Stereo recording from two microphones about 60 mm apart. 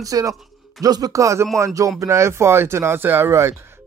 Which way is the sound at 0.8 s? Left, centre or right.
Right.